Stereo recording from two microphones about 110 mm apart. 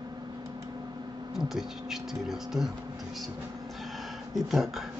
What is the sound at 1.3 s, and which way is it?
Speech, 5° right (ahead or behind).